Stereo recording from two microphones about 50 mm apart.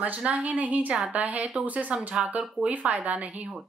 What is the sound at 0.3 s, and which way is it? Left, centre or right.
Speech, right.